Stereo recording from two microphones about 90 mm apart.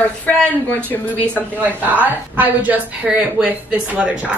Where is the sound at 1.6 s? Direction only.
20° right (ahead or behind).